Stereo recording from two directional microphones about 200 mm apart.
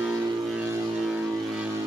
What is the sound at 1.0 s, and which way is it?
Vehicle, 5° right (ahead or behind).